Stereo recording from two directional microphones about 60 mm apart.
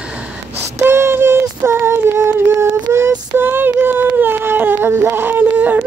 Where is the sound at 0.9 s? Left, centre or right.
Right.